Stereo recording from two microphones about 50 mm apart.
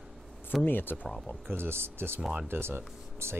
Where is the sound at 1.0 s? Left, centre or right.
Centre.